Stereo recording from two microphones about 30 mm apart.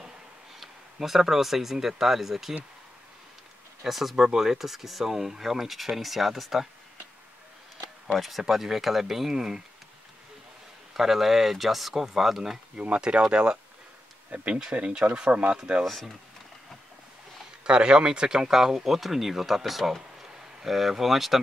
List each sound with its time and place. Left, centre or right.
0.9 s speech: centre
3.8 s speech: centre
8.1 s speech: centre
11.0 s speech: centre
12.7 s speech: right
14.8 s speech: right
15.8 s speech: centre
17.6 s speech: right; by 21.4 s centre